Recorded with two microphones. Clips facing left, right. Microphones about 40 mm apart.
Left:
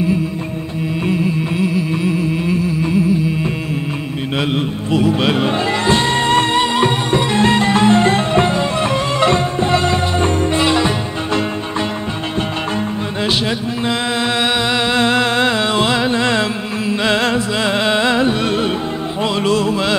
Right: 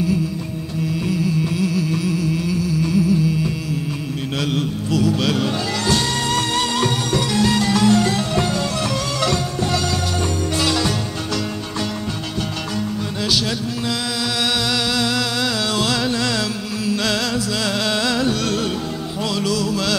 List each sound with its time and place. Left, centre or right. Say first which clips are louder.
1.0 s music: left 4 dB; left
15.0 s music: left 6 dB; left